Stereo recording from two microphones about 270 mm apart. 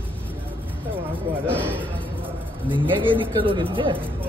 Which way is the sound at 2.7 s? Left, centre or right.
Centre.